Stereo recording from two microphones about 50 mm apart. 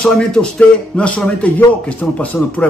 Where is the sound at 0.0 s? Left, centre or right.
Centre.